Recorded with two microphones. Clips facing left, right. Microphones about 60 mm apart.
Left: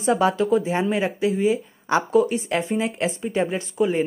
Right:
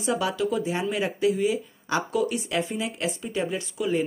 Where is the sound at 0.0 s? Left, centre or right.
Left.